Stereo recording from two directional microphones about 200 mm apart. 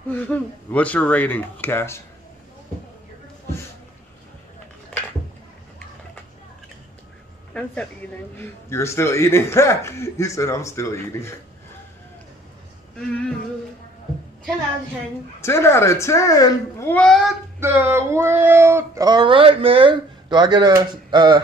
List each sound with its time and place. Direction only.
0.1 s speech: 10° left (ahead or behind)
8.4 s speech: 15° left (ahead or behind)
15.4 s speech: 15° left (ahead or behind)
17.6 s speech: 10° right (ahead or behind)